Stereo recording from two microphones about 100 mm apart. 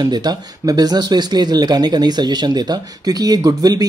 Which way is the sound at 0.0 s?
45° right (ahead or behind).